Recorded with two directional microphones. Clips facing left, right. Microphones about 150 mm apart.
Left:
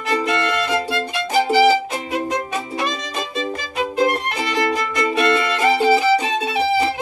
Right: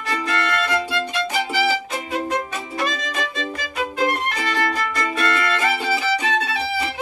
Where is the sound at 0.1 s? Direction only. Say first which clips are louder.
Left 4 dB; 20° left (ahead or behind).